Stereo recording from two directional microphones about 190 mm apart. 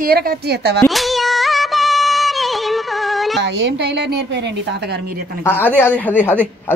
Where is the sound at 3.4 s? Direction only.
65° right (ahead or behind).